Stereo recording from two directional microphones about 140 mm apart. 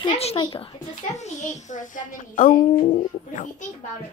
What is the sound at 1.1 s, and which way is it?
A child's voice, 55° left (ahead or behind).